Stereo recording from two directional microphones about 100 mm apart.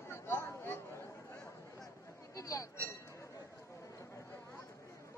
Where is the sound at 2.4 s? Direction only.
35° left (ahead or behind).